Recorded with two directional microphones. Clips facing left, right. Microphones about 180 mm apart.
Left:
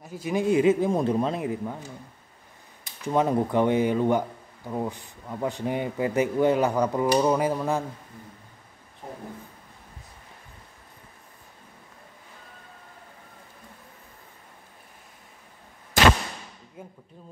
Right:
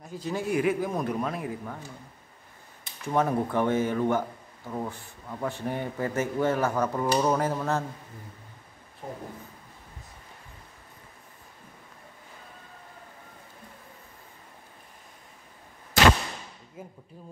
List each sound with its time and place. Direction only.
0.0 s speech: 10° left (ahead or behind)
3.0 s speech: 20° left (ahead or behind)
16.8 s a sound: 5° right (ahead or behind)